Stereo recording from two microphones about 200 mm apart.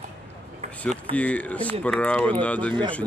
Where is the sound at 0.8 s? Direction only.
5° left (ahead or behind).